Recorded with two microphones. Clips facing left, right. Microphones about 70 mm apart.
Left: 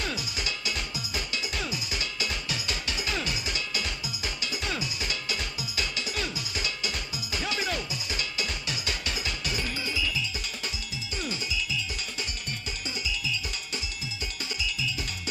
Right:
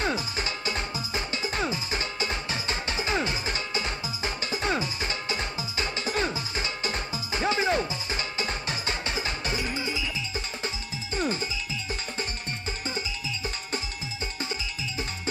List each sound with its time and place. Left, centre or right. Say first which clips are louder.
0.0 s music: right 5 dB; right